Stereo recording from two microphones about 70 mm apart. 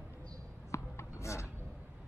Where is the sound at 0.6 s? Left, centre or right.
Left.